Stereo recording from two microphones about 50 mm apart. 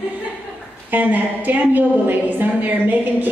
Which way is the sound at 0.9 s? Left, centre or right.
Right.